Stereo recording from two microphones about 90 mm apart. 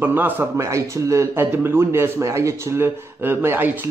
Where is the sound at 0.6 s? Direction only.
35° right (ahead or behind).